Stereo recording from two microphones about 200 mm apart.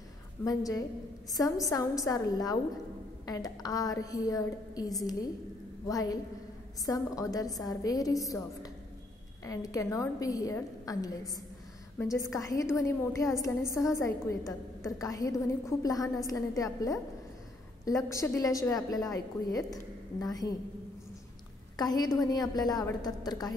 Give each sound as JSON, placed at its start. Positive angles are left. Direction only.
{"t": 0.4, "sound": "a woman's voice", "side_deg": 15}
{"t": 21.7, "sound": "a woman's voice", "side_deg": 20}